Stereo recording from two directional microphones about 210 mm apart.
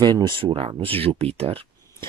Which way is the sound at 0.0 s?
20° right (ahead or behind).